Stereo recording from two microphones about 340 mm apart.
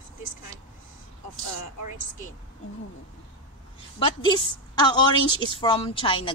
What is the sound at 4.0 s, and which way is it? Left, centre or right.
Speech, centre.